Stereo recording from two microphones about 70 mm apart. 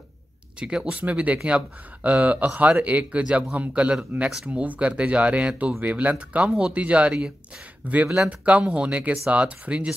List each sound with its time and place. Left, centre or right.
0.6 s speech: centre